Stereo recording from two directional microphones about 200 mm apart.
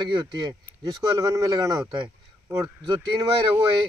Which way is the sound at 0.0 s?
20° right (ahead or behind).